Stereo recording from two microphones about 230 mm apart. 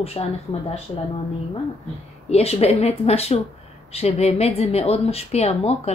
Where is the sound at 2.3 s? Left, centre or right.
Left.